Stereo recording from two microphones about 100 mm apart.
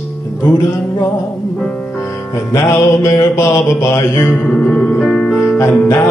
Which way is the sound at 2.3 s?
30° left (ahead or behind).